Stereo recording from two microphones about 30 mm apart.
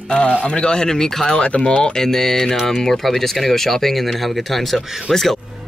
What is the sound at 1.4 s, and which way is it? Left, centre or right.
Speech, left.